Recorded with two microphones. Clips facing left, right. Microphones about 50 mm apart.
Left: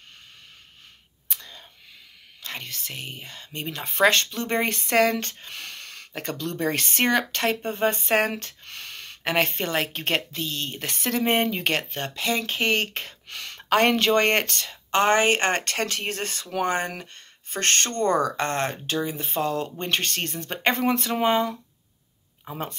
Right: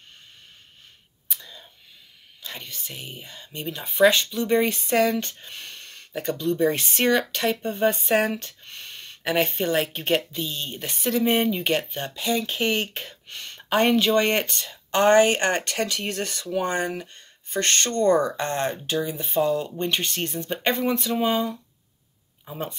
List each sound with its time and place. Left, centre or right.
1.3 s whispering: left
2.4 s speech: left
3.7 s speech: left
4.0 s speech: left
5.5 s a sound: left
6.3 s speech: left
8.6 s a sound: left
9.2 s speech: left
11.4 s speech: left
13.7 s speech: left
14.7 s speech: left
18.3 s speech: left
22.4 s a sound: left